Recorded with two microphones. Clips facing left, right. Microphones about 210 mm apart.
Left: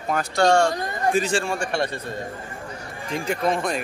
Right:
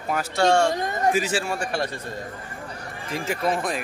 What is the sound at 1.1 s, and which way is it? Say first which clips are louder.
Speech: left 3 dB; 5° right (ahead or behind).